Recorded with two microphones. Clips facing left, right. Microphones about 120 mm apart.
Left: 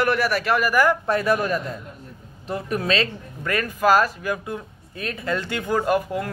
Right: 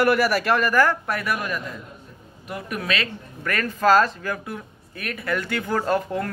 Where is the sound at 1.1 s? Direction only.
30° left (ahead or behind).